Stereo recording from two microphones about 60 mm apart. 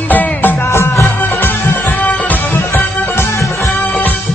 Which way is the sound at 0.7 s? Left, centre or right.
Left.